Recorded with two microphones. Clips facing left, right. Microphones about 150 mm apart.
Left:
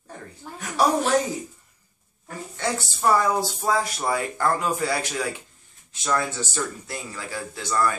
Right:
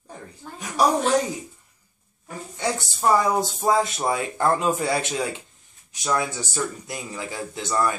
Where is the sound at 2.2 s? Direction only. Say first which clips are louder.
Right 1 dB; 15° right (ahead or behind).